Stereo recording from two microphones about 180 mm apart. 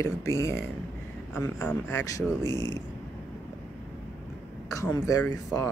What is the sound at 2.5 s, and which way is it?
Speech, 20° right (ahead or behind).